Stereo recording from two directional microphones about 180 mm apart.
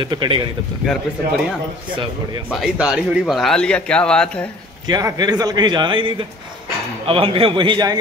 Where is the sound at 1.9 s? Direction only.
25° right (ahead or behind).